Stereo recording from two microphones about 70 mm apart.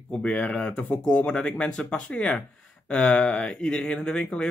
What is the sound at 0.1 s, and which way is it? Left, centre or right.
Speech, centre.